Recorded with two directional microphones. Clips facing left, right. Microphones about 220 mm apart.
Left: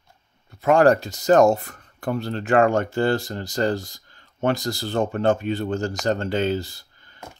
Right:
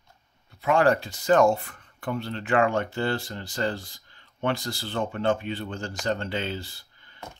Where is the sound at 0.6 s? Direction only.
45° left (ahead or behind).